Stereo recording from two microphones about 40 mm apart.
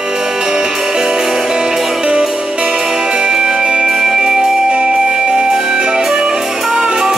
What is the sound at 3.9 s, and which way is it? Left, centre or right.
Music, centre.